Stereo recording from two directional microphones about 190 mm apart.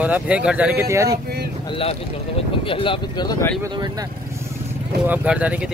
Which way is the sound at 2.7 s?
25° left (ahead or behind).